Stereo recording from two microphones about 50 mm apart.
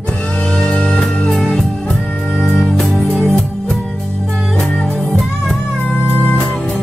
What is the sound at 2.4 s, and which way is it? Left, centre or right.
Music, centre.